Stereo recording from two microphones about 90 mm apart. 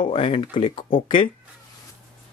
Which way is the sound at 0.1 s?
85° left.